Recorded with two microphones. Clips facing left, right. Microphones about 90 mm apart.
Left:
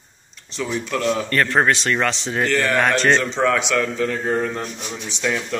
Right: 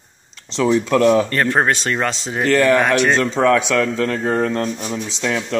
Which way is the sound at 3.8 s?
90° right.